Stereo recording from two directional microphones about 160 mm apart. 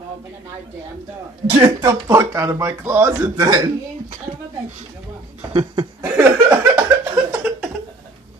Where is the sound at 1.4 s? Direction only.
30° right (ahead or behind).